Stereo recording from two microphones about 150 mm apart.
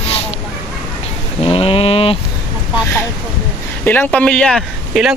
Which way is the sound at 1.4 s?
40° left (ahead or behind).